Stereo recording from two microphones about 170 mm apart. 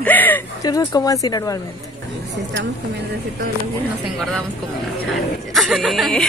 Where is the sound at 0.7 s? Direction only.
20° left (ahead or behind).